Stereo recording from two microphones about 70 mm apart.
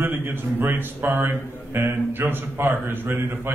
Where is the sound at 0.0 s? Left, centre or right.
Right.